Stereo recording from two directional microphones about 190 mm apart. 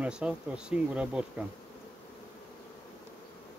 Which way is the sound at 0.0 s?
5° right (ahead or behind).